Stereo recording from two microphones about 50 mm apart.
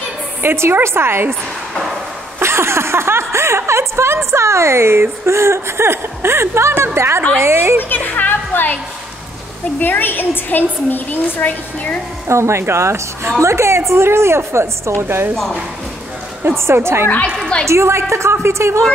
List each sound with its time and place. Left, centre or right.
0.4 s a woman's voice: right
2.4 s a woman's voice: right
7.9 s music: left
9.8 s a woman's voice: left
12.3 s a woman's voice: right
16.5 s a woman's voice: right